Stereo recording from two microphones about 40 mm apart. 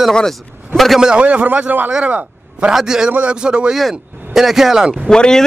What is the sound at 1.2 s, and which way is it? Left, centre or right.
Speech, right.